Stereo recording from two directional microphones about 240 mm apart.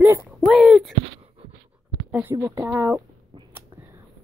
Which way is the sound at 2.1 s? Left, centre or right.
Centre.